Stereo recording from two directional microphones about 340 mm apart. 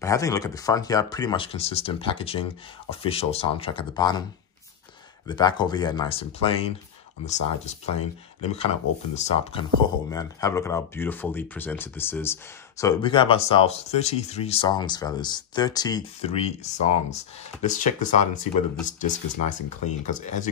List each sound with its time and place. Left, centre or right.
0.0 s speech: centre
5.2 s speech: centre